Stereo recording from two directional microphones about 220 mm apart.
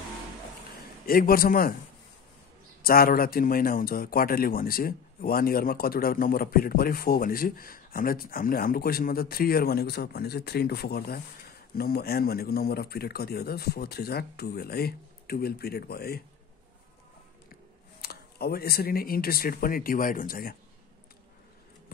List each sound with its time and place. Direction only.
1.0 s a man's voice: 40° left (ahead or behind)
2.8 s a man's voice: 40° left (ahead or behind)
18.0 s a man's voice: 45° left (ahead or behind)